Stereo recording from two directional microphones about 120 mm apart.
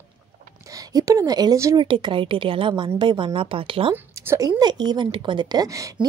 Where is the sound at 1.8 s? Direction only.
45° right (ahead or behind).